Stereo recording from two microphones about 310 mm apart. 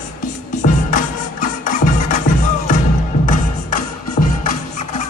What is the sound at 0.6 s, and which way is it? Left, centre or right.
Music, left.